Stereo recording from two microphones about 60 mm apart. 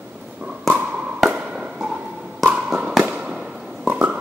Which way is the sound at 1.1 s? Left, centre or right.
Centre.